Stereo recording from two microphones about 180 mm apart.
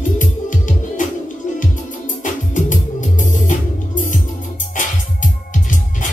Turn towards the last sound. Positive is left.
turn(degrees=45)  # may be behind; listen again after turning